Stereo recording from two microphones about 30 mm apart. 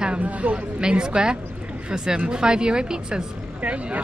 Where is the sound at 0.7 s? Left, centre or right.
Right.